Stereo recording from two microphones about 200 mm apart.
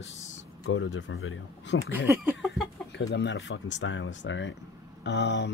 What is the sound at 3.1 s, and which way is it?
Speech, 60° left (ahead or behind).